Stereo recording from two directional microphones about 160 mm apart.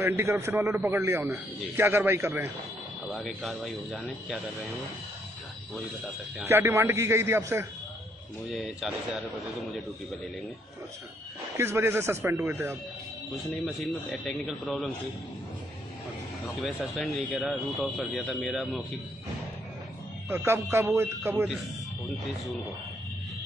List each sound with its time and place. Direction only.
0.0 s a man's voice: 15° right (ahead or behind)
3.1 s a man's voice: centre (ahead or behind)
6.4 s a man's voice: 15° right (ahead or behind)
8.5 s a man's voice: centre (ahead or behind)
11.5 s a man's voice: 15° right (ahead or behind)
13.7 s a man's voice: centre (ahead or behind)
16.5 s a man's voice: centre (ahead or behind)
20.2 s a man's voice: 15° right (ahead or behind)